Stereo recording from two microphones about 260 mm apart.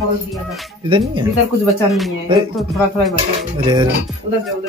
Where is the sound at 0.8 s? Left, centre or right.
Centre.